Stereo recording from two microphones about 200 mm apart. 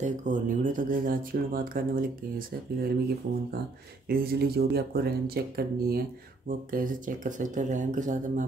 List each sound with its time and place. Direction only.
0.0 s speech: 40° right (ahead or behind)
4.1 s speech: 50° right (ahead or behind)